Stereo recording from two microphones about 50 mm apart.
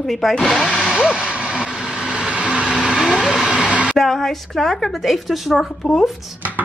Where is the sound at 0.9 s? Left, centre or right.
Centre.